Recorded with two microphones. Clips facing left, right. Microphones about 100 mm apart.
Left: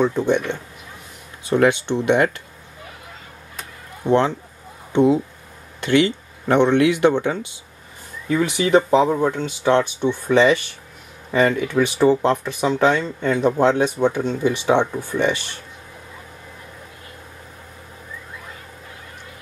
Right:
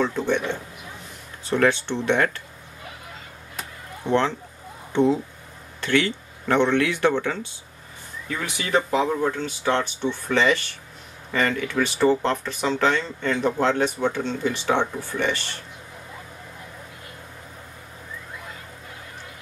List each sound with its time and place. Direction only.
0.0 s speech: 15° left (ahead or behind)
1.4 s speech: 15° left (ahead or behind)
4.0 s speech: 15° left (ahead or behind)